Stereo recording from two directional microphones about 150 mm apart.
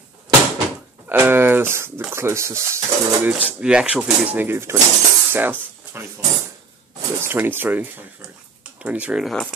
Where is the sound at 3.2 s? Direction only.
10° right (ahead or behind).